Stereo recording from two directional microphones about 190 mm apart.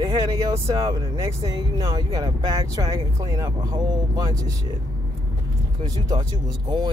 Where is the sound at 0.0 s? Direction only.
15° right (ahead or behind).